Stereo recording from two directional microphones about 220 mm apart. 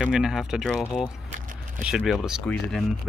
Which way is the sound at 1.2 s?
35° right (ahead or behind).